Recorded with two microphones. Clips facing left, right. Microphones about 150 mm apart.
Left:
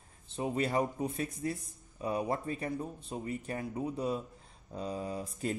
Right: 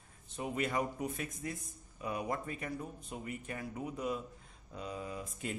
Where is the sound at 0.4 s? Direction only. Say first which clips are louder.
Left 4 dB; 30° left (ahead or behind).